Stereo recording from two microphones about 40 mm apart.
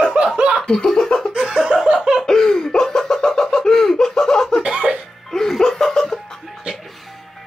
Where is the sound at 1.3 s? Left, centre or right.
Right.